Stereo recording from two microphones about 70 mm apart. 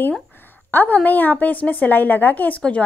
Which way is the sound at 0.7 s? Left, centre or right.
Left.